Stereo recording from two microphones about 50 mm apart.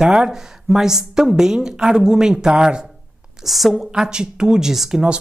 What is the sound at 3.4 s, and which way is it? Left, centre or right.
Speech, centre.